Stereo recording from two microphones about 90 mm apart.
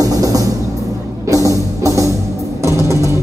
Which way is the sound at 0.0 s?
40° right (ahead or behind).